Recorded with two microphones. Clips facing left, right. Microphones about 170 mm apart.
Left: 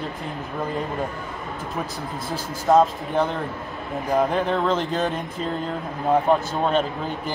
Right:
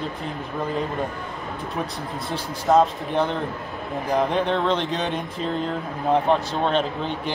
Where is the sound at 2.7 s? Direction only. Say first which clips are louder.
Left 1 dB; 5° left (ahead or behind).